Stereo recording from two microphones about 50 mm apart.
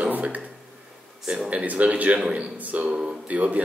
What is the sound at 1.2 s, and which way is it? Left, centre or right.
Speech, centre.